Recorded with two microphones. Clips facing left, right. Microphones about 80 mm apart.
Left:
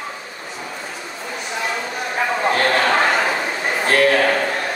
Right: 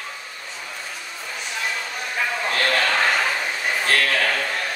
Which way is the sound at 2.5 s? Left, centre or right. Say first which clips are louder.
Left 5 dB; left.